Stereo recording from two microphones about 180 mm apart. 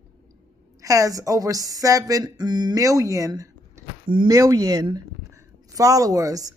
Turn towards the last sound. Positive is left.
turn(degrees=-20)  # may be behind; listen again after turning